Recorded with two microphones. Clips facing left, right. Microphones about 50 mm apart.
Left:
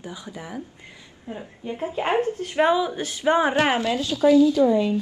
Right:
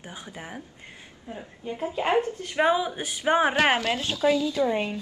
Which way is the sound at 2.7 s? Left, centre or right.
Centre.